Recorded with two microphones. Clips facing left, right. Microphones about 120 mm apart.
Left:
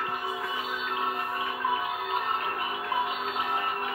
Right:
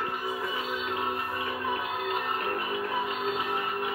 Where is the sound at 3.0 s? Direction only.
Centre (ahead or behind).